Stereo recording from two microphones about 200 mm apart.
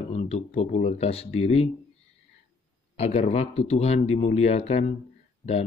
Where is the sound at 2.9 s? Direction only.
30° left (ahead or behind).